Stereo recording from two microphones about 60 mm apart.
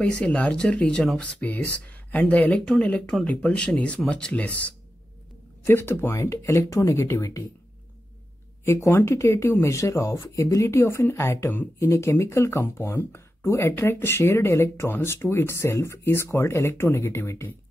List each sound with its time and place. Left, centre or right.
0.0 s speech: centre
5.7 s speech: left
8.6 s speech: left
9.6 s speech: left
14.9 s speech: left
15.1 s speech: left